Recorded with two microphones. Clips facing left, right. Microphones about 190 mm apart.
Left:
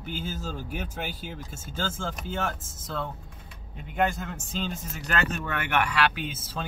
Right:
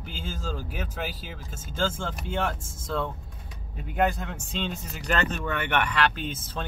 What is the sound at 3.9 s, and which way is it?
Speech, centre (ahead or behind).